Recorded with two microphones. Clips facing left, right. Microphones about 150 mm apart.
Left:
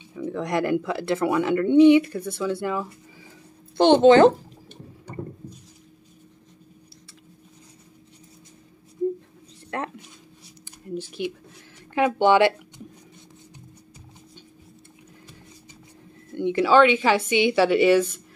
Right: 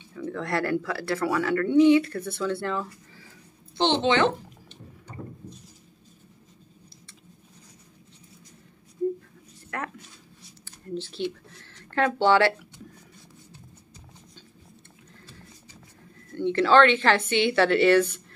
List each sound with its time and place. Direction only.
0.1 s speech: 15° left (ahead or behind)
3.7 s speech: 50° left (ahead or behind)
9.7 s speech: 25° left (ahead or behind)
10.9 s speech: 10° left (ahead or behind)
16.3 s speech: 15° left (ahead or behind)